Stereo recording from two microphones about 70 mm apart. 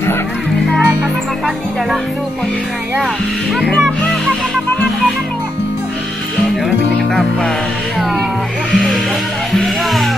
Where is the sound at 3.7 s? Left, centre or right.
Centre.